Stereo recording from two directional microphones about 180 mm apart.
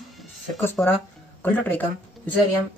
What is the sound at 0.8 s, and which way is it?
Speech, 5° left (ahead or behind).